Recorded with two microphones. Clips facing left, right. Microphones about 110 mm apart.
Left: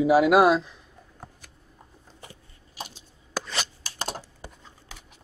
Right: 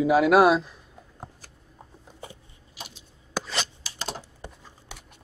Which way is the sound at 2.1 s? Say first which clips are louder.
Right 5 dB; 20° right (ahead or behind).